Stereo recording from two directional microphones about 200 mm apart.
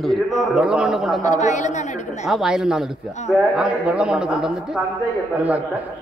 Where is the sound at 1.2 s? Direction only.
35° left (ahead or behind).